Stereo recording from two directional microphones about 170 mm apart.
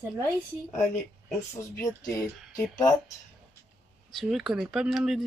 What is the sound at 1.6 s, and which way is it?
Speech, 20° left (ahead or behind).